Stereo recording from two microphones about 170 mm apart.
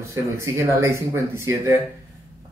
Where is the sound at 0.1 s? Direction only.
15° right (ahead or behind).